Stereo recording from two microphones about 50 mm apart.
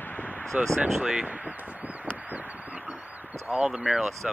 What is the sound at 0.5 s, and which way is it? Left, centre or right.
Speech, right.